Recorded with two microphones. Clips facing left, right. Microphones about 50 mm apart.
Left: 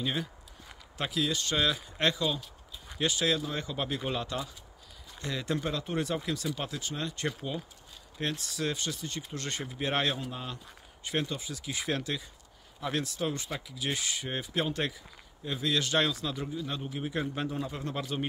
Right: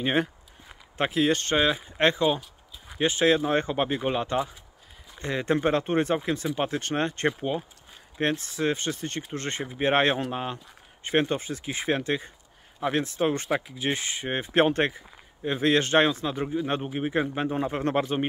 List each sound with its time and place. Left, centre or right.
0.0 s speech: right
6.8 s speech: right